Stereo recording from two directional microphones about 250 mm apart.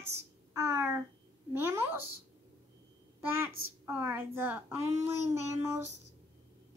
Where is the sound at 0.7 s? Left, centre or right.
Centre.